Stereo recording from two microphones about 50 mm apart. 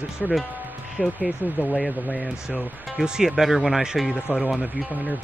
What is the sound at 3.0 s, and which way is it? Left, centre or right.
Speech, centre.